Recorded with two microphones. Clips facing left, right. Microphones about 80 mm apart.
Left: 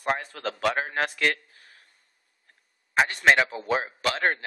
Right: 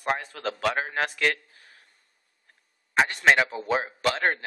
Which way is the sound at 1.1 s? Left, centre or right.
Centre.